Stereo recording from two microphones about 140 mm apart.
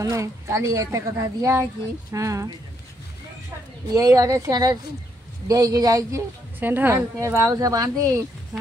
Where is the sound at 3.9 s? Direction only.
20° right (ahead or behind).